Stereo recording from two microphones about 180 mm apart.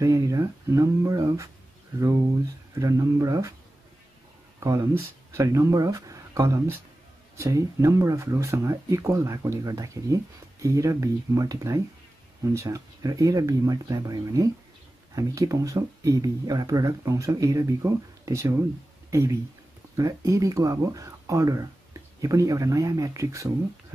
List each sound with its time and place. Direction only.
0.0 s speech: 20° right (ahead or behind)
2.7 s speech: 15° right (ahead or behind)
4.6 s speech: 20° right (ahead or behind)